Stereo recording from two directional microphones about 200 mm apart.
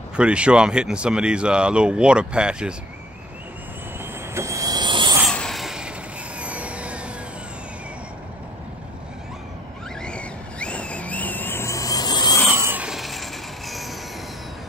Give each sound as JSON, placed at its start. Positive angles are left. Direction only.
{"t": 0.1, "sound": "speech", "side_deg": -5}
{"t": 4.0, "sound": "vehicle", "side_deg": -15}
{"t": 5.2, "sound": "a sound", "side_deg": 0}
{"t": 6.4, "sound": "vehicle", "side_deg": -5}
{"t": 10.0, "sound": "vehicle", "side_deg": 5}
{"t": 12.4, "sound": "tools", "side_deg": -10}